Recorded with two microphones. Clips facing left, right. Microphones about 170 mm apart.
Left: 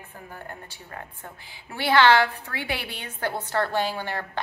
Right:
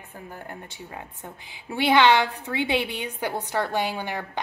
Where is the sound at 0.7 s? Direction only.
15° right (ahead or behind).